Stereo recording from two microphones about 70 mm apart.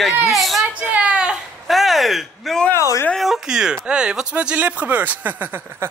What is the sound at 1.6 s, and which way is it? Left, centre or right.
Speech, centre.